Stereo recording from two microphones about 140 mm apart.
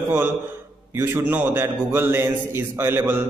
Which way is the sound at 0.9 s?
15° right (ahead or behind).